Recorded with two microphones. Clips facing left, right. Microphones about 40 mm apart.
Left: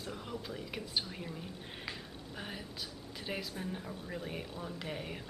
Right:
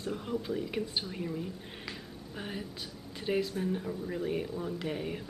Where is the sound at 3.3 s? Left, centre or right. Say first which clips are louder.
Right 9 dB; centre.